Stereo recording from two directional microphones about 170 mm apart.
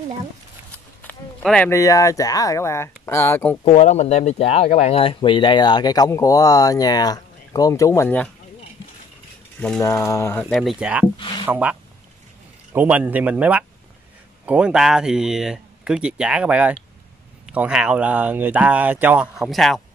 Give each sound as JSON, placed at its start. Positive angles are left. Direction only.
{"t": 0.7, "sound": "a sound", "side_deg": 5}
{"t": 1.7, "sound": "speech", "side_deg": 20}
{"t": 3.6, "sound": "speech", "side_deg": 40}
{"t": 9.8, "sound": "speech", "side_deg": 20}
{"t": 10.5, "sound": "speech", "side_deg": 0}
{"t": 11.1, "sound": "speech", "side_deg": 30}
{"t": 11.4, "sound": "speech", "side_deg": -15}
{"t": 12.7, "sound": "speech", "side_deg": -10}